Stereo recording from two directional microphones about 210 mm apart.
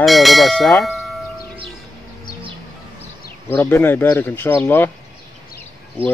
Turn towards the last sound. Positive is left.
turn(degrees=-25)  # may be behind; listen again after turning